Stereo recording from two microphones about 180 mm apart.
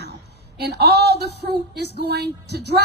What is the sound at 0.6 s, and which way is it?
A woman's voice, 65° right (ahead or behind).